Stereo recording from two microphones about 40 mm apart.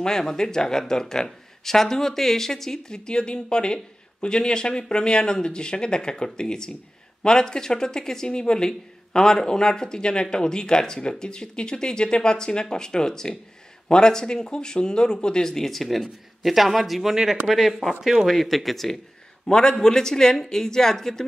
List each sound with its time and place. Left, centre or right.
0.0 s speech: centre
17.1 s speech: centre
18.4 s speech: centre